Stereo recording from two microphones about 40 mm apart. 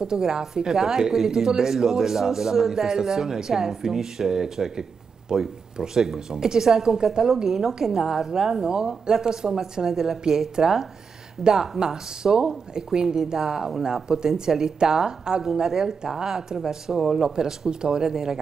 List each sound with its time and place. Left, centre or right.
0.0 s speech: centre
9.8 s speech: centre